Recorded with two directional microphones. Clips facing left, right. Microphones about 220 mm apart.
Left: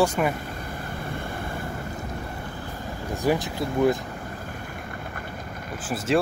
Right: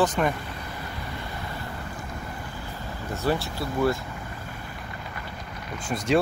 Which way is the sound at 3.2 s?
15° left (ahead or behind).